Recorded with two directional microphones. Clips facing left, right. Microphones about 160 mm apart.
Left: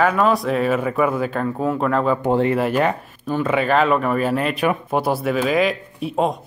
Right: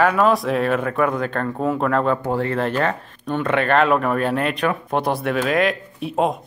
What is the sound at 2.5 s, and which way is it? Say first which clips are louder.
Speech: left 2 dB; 10° left (ahead or behind).